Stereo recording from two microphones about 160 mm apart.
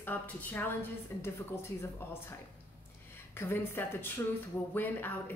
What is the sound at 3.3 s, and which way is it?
Speech, 15° left (ahead or behind).